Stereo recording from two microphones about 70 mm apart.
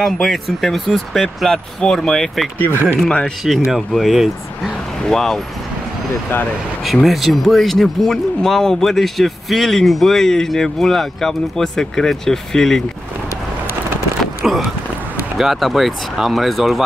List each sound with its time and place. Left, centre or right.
0.0 s speech: centre
2.7 s speech: right
3.4 s speech: centre
6.8 s speech: centre
14.4 s a sound: centre
15.3 s speech: centre